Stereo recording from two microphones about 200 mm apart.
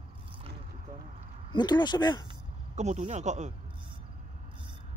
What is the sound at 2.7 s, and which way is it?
Speech, 35° right (ahead or behind).